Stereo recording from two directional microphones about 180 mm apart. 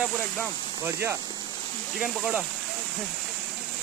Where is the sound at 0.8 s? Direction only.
15° right (ahead or behind).